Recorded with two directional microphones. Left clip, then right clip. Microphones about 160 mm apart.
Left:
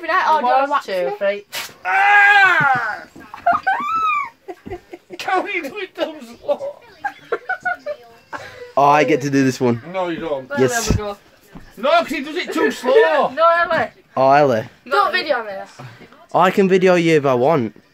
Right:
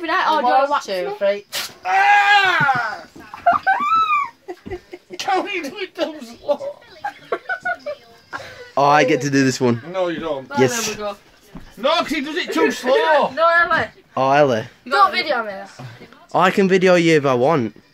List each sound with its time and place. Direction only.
0.0 s speech: 45° right (ahead or behind)
0.8 s speech: 15° left (ahead or behind)
3.4 s dog: 40° right (ahead or behind)
5.1 s speech: 15° left (ahead or behind)
7.0 s chicken: 40° right (ahead or behind)
8.7 s speech: 10° left (ahead or behind)
11.8 s a man's voice: 25° left (ahead or behind)
13.3 s a man's voice: 50° left (ahead or behind)
14.1 s speech: 20° left (ahead or behind)
15.0 s a woman's voice: 35° left (ahead or behind)
16.3 s speech: 10° left (ahead or behind)